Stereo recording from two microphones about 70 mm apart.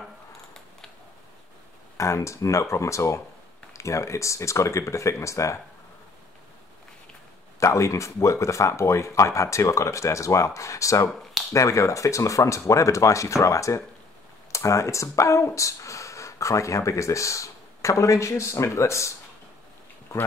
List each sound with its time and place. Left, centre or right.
2.0 s speech: left
7.6 s speech: left